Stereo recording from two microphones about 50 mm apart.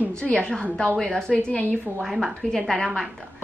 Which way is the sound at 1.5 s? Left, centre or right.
Left.